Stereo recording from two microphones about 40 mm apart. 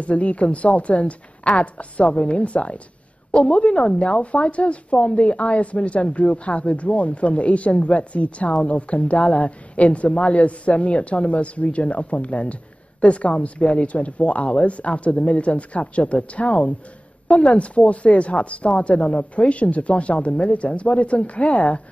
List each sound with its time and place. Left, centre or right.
0.0 s a woman's voice: left